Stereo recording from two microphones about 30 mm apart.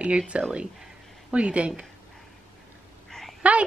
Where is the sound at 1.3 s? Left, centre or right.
Right.